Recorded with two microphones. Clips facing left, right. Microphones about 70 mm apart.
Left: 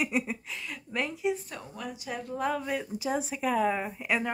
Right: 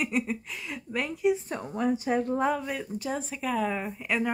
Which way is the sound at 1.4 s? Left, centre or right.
Right.